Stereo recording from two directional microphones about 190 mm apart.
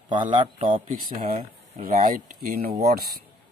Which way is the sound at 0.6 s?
45° right (ahead or behind).